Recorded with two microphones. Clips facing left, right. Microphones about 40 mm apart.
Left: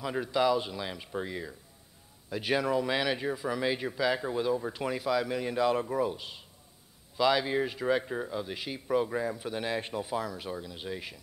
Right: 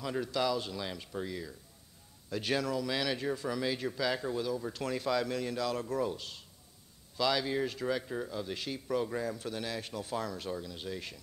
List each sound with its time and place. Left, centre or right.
0.0 s a man's voice: centre
10.0 s speech: centre